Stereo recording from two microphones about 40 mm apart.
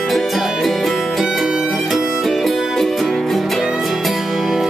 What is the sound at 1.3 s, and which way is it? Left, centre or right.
Music, centre.